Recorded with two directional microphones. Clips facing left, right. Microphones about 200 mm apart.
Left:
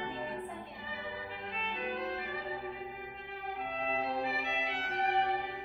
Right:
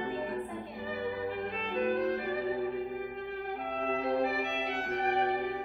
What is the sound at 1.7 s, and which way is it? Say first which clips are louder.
Music: right 9 dB; 50° right (ahead or behind).